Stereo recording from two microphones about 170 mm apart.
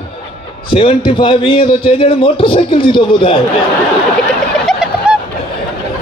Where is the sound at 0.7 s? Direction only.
30° left (ahead or behind).